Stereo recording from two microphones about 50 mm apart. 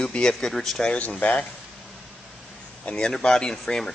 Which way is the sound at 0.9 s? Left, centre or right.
Left.